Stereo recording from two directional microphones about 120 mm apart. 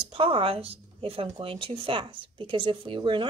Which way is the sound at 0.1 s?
50° right (ahead or behind).